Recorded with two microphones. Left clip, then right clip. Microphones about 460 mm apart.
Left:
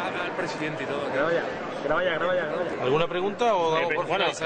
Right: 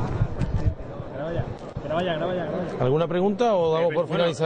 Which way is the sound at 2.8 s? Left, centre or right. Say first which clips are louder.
Right 3 dB; right.